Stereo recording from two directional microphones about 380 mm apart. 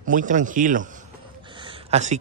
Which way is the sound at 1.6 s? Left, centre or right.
Centre.